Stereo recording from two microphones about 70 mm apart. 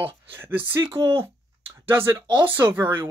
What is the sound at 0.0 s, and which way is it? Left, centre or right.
Speech, right.